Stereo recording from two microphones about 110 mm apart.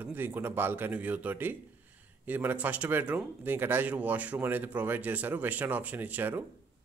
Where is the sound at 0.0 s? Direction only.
20° right (ahead or behind).